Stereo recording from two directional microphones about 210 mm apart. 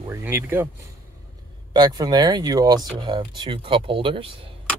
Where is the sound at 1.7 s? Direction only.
20° right (ahead or behind).